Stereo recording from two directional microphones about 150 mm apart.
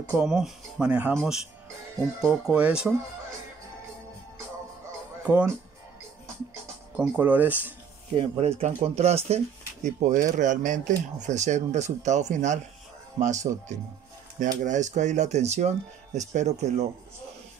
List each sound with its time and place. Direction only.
0.1 s speech: 5° right (ahead or behind)
5.2 s speech: 15° right (ahead or behind)
7.0 s speech: 10° right (ahead or behind)
8.1 s speech: 40° right (ahead or behind)